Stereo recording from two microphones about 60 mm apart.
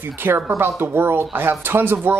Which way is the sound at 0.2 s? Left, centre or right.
Right.